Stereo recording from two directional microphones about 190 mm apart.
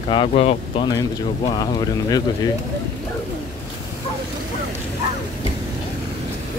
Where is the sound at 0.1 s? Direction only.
30° left (ahead or behind).